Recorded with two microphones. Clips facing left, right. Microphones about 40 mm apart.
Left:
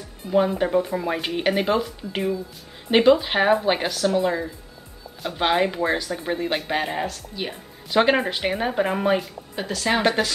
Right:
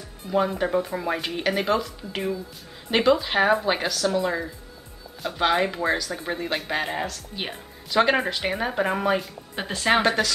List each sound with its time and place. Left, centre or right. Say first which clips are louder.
0.3 s speech: left 3 dB; centre
2.9 s speech: left 4 dB; centre
9.6 s speech: right 1 dB; centre
10.0 s speech: left 1 dB; centre